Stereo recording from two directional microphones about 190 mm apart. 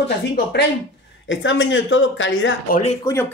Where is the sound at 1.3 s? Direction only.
80° left.